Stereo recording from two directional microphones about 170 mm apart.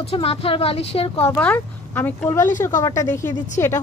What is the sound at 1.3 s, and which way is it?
Speech, 10° left (ahead or behind).